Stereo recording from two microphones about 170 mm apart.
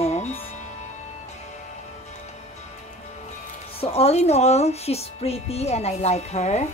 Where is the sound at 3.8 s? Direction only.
35° left (ahead or behind).